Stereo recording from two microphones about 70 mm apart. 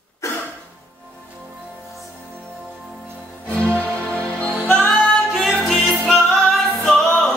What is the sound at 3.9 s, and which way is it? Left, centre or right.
Music, centre.